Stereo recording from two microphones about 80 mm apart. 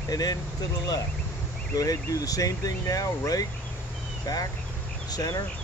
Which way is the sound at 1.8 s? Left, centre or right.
Left.